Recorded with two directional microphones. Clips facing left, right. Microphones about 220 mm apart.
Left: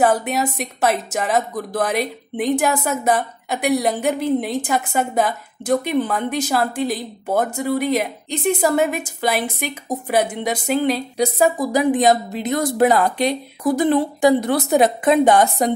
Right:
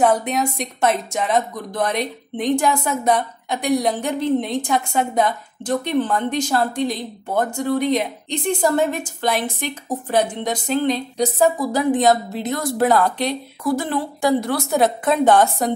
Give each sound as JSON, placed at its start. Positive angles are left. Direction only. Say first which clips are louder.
{"t": 0.0, "sound": "a woman's voice", "louder": "even", "side_deg": 5}